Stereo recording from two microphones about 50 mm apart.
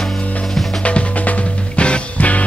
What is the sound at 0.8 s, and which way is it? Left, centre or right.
Music, left.